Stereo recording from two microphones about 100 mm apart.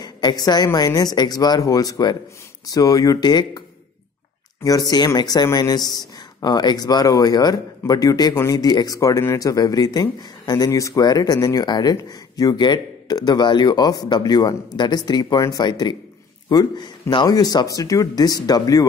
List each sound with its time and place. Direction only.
0.0 s a woman's voice: 45° left (ahead or behind)
4.6 s a woman's voice: 40° left (ahead or behind)